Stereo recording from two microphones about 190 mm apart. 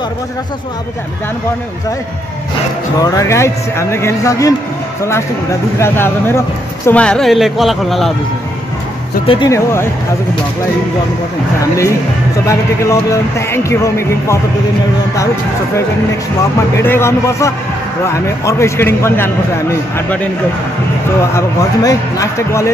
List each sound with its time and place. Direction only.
3.0 s a man's voice: 20° left (ahead or behind)
5.8 s a man's voice: 15° left (ahead or behind)
9.2 s speech: 30° left (ahead or behind)
9.5 s a man's voice: 15° left (ahead or behind)
12.4 s a man's voice: 15° left (ahead or behind)
16.7 s a man's voice: 10° left (ahead or behind)
21.3 s a man's voice: 15° left (ahead or behind)